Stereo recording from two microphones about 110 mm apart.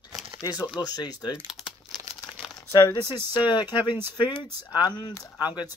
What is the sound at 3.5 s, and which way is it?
Speech, 45° left (ahead or behind).